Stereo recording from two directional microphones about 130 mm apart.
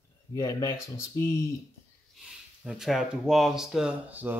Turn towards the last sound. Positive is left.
turn(degrees=-15)  # may be behind; listen again after turning